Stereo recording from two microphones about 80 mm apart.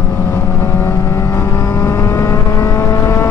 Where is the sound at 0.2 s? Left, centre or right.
Left.